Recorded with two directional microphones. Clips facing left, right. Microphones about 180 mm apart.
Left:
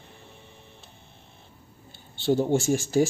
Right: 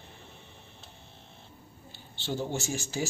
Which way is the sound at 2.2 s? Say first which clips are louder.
Left 10 dB; 50° left (ahead or behind).